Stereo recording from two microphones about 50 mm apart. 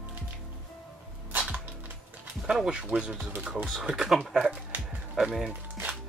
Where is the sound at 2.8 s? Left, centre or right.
Right.